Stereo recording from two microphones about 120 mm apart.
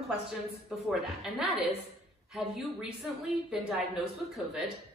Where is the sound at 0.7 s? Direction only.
5° right (ahead or behind).